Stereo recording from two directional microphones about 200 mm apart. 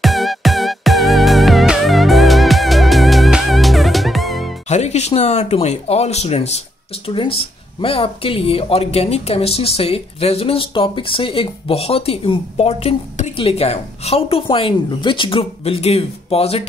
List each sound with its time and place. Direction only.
0.0 s music: centre (ahead or behind)
4.6 s speech: 35° left (ahead or behind)